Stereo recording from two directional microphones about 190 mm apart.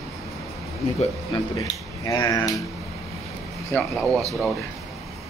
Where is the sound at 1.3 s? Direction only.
20° left (ahead or behind).